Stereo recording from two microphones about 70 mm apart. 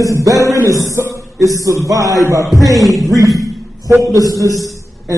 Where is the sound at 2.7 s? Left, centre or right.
Centre.